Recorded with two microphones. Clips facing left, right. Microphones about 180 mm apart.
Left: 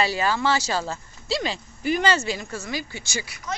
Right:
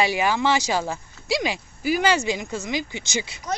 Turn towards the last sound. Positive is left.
turn(degrees=-20)  # may be behind; listen again after turning